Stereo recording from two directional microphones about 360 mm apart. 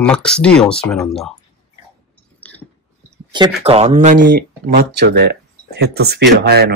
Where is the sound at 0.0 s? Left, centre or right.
Centre.